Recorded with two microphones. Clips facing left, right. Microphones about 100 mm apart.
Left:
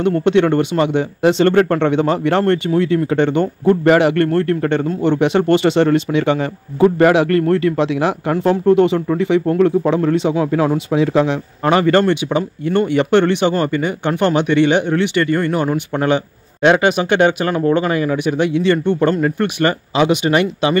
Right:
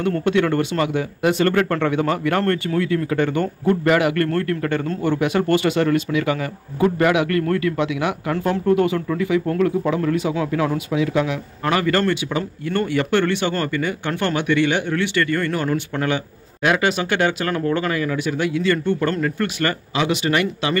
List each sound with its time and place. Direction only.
0.0 s a man's voice: 20° left (ahead or behind)